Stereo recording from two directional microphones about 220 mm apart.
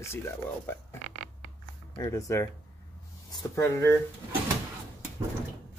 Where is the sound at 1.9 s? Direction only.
15° left (ahead or behind).